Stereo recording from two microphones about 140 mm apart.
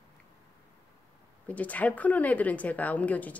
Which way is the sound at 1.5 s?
10° left (ahead or behind).